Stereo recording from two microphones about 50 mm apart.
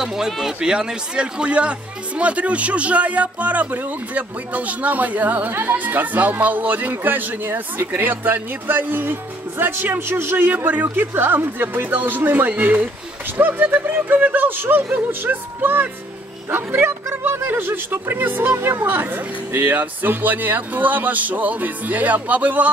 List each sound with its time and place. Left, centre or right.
0.0 s a man's voice: centre; by 10.3 s right
10.3 s a man's voice: right